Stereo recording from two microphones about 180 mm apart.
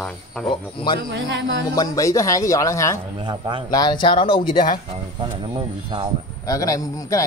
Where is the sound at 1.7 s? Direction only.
20° left (ahead or behind).